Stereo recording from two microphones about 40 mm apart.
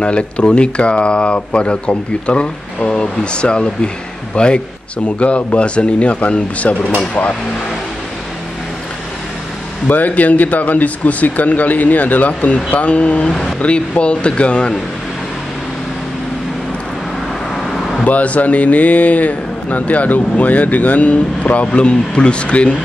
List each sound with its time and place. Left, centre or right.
0.0 s speech: left
9.8 s speech: left
18.0 s speech: left